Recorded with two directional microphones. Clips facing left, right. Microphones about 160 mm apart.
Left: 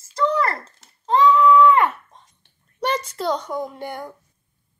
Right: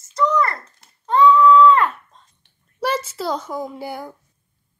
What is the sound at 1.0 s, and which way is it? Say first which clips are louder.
Babbling: right 2 dB; 20° left (ahead or behind).